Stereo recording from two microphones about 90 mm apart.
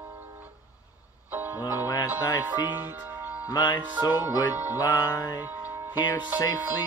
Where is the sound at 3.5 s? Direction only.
45° left (ahead or behind).